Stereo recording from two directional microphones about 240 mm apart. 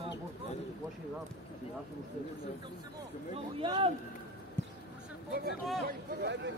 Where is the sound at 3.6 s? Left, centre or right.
Right.